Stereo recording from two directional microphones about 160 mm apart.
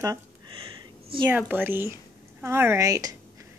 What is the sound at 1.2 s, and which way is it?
A woman's voice, 10° right (ahead or behind).